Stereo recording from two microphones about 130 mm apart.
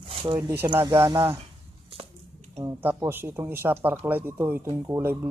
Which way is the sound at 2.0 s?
55° right (ahead or behind).